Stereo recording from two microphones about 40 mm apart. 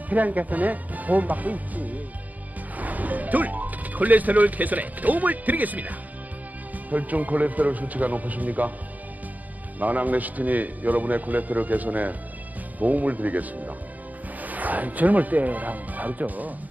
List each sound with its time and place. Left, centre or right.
0.1 s speech: right
9.8 s a man's voice: right